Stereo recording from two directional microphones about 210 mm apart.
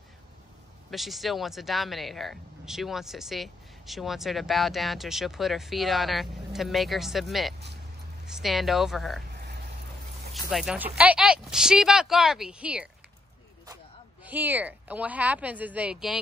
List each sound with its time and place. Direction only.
0.8 s speech: centre (ahead or behind)
9.4 s a sound: 50° right (ahead or behind)
10.3 s speech: centre (ahead or behind)
14.2 s speech: 10° right (ahead or behind)